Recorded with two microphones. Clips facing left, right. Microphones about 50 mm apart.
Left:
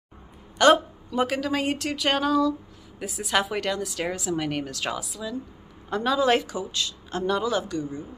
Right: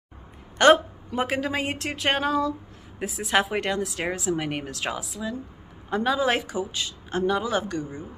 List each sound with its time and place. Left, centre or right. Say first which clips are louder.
0.6 s speech: right 1 dB; right
1.1 s speech: left 1 dB; right
5.9 s speech: left 1 dB; centre
7.4 s speech: left 1 dB; right